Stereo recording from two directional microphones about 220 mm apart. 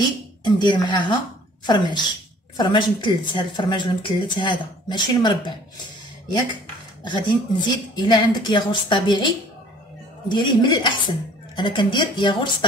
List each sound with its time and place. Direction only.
0.4 s speech: 20° left (ahead or behind)
7.1 s speech: 20° left (ahead or behind)